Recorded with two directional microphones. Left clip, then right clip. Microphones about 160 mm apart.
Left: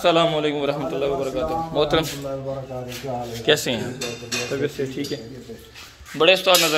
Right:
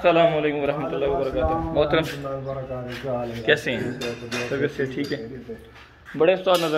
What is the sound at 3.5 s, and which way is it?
Speech, 25° left (ahead or behind).